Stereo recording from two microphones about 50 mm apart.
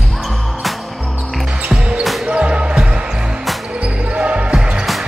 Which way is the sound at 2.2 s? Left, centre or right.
Right.